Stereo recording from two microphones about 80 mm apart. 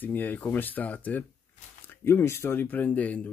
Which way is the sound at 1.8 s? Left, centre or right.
Left.